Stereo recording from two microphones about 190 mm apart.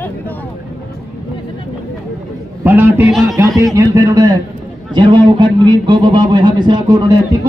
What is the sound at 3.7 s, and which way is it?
A man's voice, 20° right (ahead or behind).